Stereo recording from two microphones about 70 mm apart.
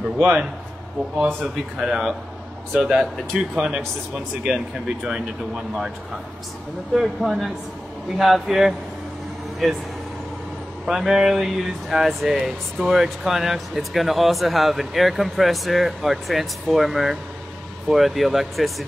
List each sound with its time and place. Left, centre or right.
1.2 s speech: centre
6.9 s speech: centre
10.9 s speech: centre